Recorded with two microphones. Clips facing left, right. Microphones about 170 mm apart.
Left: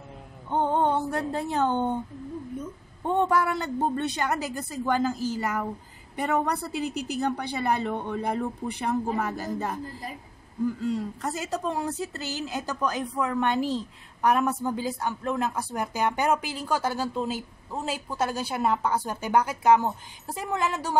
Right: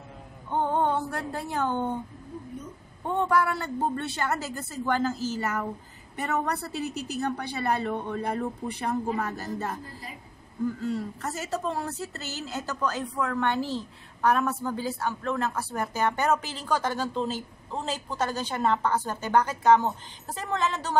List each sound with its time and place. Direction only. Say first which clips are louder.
0.5 s a sound: left 2 dB; 20° left (ahead or behind)
3.1 s a woman's voice: left 1 dB; 20° left (ahead or behind)
10.8 s a woman's voice: left 2 dB; 15° left (ahead or behind)